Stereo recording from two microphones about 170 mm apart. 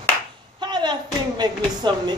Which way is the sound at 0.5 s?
25° right (ahead or behind).